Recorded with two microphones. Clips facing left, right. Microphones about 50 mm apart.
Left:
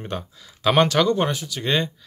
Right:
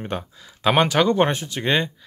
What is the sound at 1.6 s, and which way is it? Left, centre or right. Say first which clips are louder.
Speech: right 1 dB; right.